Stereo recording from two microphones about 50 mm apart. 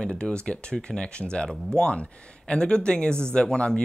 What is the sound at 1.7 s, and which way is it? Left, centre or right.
Speech, left.